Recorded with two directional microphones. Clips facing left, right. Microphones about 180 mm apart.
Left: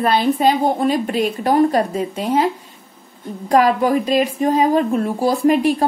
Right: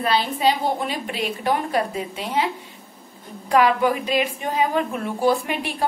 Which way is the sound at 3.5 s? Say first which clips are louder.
Left 4 dB; 40° left (ahead or behind).